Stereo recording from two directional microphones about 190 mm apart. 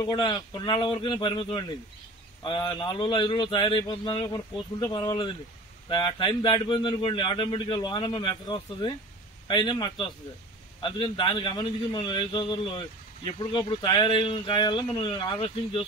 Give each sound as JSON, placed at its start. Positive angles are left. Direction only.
{"t": 0.0, "sound": "a man's voice", "side_deg": 25}